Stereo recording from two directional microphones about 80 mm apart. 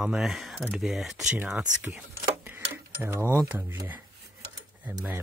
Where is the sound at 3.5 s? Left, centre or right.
Right.